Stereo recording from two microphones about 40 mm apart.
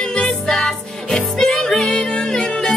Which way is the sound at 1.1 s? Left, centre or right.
Centre.